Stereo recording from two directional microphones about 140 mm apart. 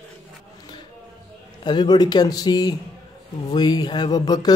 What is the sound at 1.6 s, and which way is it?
A man's voice, 30° left (ahead or behind).